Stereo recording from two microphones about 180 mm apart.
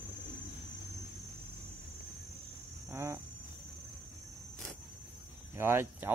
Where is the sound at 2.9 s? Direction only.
15° right (ahead or behind).